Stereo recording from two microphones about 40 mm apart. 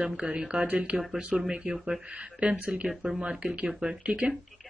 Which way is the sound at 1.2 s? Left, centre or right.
Right.